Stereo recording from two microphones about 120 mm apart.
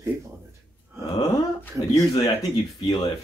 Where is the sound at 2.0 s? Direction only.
35° left (ahead or behind).